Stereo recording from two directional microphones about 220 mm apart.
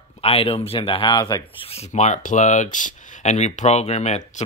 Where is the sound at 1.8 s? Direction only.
30° left (ahead or behind).